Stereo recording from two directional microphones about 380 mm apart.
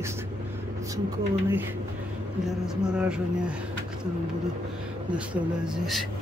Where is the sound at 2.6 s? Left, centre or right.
Centre.